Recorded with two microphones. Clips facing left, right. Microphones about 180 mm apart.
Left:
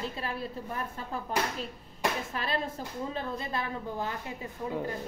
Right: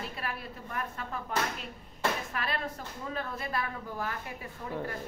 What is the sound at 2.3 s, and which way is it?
A woman's voice, 30° left (ahead or behind).